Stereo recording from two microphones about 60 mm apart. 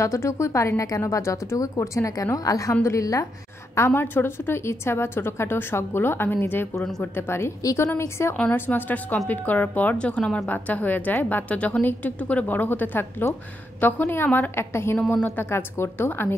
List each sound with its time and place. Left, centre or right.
0.0 s speech: left
0.8 s speech: left
2.3 s a woman's voice: left
2.8 s speech: left
3.7 s a woman's voice: left
8.5 s a woman's voice: left
10.1 s a woman's voice: centre
10.4 s a woman's voice: left
14.6 s a woman's voice: left